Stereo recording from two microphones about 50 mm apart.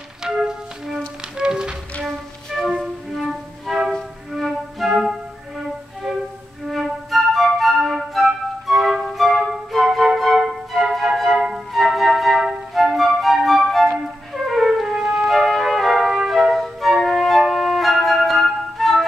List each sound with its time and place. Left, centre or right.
0.2 s music: centre
2.0 s music: centre
6.7 s flute: centre
12.7 s music: centre